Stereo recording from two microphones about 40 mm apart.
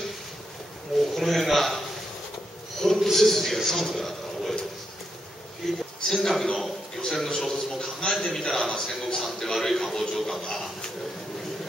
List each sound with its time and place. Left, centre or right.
1.1 s a man's voice: centre
2.8 s a sound: centre
5.6 s a man's voice: centre